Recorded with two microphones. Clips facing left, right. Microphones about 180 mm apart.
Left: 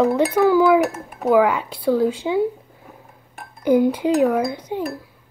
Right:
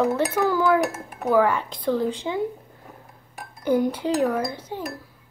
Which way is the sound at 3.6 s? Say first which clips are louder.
Left 5 dB; 10° left (ahead or behind).